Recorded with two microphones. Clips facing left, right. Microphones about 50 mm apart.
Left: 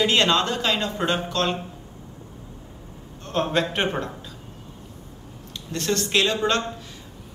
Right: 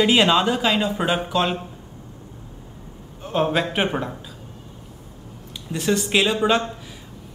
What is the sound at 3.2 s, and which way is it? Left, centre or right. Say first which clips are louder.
Speech: right 2 dB; centre.